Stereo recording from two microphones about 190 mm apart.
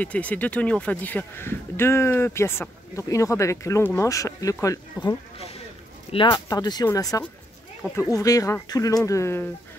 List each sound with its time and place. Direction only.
0.0 s speech: 10° left (ahead or behind)
6.1 s speech: 25° left (ahead or behind)